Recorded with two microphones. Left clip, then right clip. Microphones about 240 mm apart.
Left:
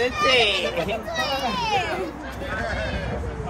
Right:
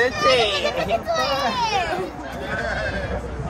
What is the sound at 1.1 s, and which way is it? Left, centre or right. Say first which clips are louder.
Children playing: right 4 dB; right.